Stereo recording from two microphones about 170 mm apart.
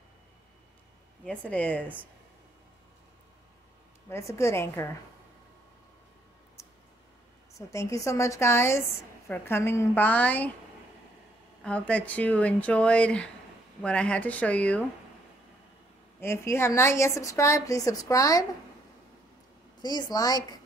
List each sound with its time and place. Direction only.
1.2 s a woman's voice: 5° left (ahead or behind)
4.1 s a woman's voice: 15° left (ahead or behind)
7.5 s a woman's voice: 20° left (ahead or behind)
11.6 s a woman's voice: 5° left (ahead or behind)
16.2 s a woman's voice: 15° left (ahead or behind)
19.8 s a woman's voice: 25° left (ahead or behind)